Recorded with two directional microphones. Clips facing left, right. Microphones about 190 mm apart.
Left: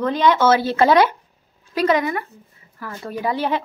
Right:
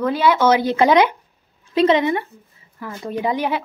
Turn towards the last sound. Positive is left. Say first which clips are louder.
# right 1 dB
turn(degrees=-15)  # may be behind; listen again after turning